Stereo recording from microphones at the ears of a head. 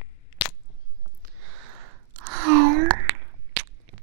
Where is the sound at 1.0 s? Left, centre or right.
Right.